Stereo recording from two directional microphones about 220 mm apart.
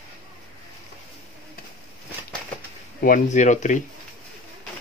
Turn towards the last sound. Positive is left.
turn(degrees=35)  # may be behind; listen again after turning